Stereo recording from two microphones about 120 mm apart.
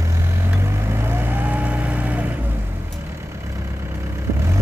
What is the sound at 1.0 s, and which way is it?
Vehicle, 15° right (ahead or behind).